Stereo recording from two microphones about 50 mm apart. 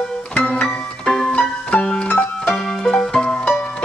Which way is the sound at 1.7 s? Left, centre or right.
Left.